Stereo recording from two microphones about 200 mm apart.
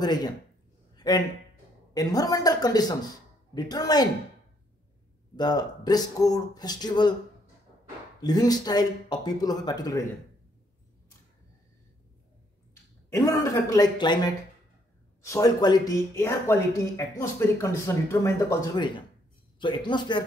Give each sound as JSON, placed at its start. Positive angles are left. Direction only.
{"t": 0.0, "sound": "speech", "side_deg": 20}
{"t": 0.9, "sound": "a sound", "side_deg": 20}
{"t": 2.0, "sound": "speech", "side_deg": 20}
{"t": 5.3, "sound": "speech", "side_deg": 20}
{"t": 8.2, "sound": "speech", "side_deg": 20}
{"t": 13.1, "sound": "speech", "side_deg": 15}